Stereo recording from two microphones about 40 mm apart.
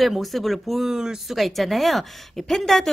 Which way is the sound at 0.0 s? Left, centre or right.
Centre.